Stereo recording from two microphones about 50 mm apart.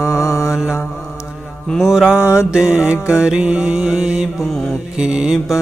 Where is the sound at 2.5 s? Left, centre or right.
Centre.